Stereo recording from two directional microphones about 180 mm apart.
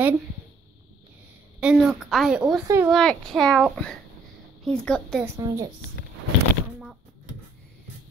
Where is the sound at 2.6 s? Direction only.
15° right (ahead or behind).